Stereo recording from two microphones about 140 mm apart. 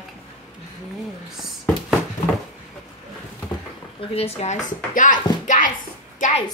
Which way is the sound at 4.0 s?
45° left (ahead or behind).